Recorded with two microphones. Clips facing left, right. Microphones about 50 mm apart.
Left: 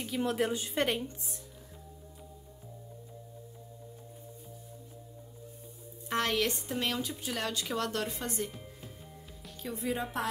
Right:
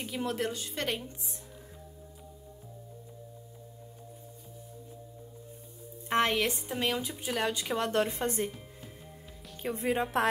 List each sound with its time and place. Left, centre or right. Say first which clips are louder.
0.0 s speech: left 2 dB; centre
0.5 s a woman's voice: left 4 dB; centre
6.0 s speech: right 4 dB; right
6.3 s speech: right 1 dB; centre; by 8.5 s right
9.6 s a woman's voice: right 4 dB; right